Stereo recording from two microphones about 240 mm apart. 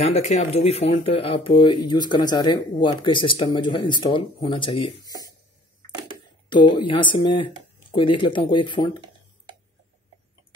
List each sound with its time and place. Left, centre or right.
0.0 s speech: left
6.5 s speech: centre